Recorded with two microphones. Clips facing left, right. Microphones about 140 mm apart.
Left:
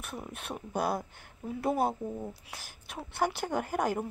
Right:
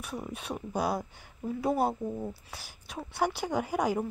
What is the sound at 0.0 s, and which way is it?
Speech, 5° left (ahead or behind).